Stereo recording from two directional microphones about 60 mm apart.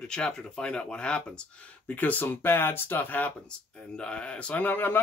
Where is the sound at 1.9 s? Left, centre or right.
Left.